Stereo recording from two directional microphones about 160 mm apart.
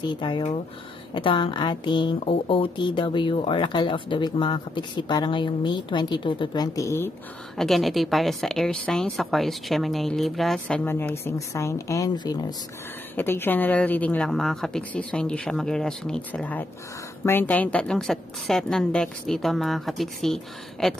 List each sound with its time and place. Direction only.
0.0 s speech: 30° left (ahead or behind)
7.5 s a woman's voice: centre (ahead or behind); by 12.5 s 25° left (ahead or behind)
13.1 s a woman's voice: 15° left (ahead or behind)